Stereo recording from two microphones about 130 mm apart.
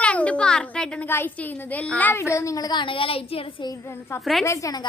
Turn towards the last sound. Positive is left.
turn(degrees=30)  # may be behind; listen again after turning